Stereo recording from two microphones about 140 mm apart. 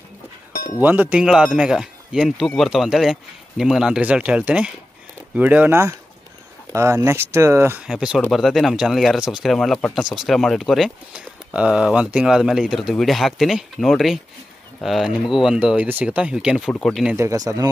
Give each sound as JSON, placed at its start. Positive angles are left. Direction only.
{"t": 0.7, "sound": "speech", "side_deg": -10}
{"t": 7.8, "sound": "speech", "side_deg": -5}
{"t": 17.2, "sound": "speech", "side_deg": -20}